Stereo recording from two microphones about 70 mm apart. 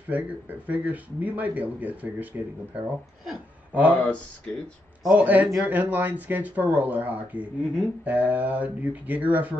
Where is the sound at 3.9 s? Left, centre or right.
Centre.